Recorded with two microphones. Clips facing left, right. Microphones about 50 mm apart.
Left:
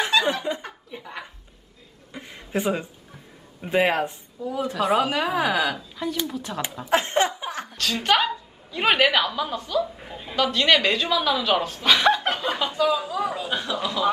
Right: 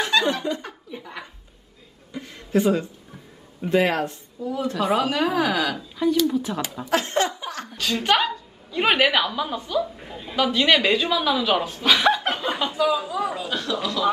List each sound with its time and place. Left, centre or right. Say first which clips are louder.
0.0 s laughter: even; centre
0.7 s laughter: right 1 dB; centre
2.1 s speech: right 5 dB; left
3.6 s chuckle: right 1 dB; centre
4.4 s speech: even; centre
5.8 s speech: right 7 dB; centre
6.9 s chuckle: left 1 dB; left
7.7 s speech: right 1 dB; centre
9.9 s speech: right 1 dB; centre
13.5 s speech: right 1 dB; centre